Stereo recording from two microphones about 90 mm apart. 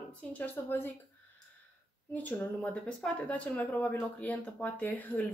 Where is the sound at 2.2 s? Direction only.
20° left (ahead or behind).